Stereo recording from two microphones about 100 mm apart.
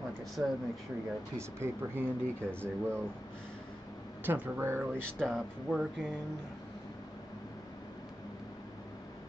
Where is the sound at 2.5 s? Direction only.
25° right (ahead or behind).